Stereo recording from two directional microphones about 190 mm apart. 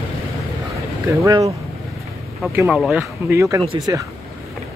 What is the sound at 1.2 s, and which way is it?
Speech, 15° right (ahead or behind).